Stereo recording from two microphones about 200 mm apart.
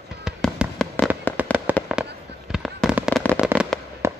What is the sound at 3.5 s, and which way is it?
Fireworks, 10° right (ahead or behind).